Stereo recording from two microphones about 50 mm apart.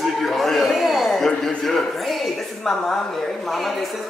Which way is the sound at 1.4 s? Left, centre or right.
Centre.